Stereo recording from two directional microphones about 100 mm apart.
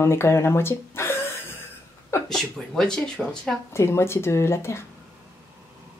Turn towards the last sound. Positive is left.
turn(degrees=25)  # may be behind; listen again after turning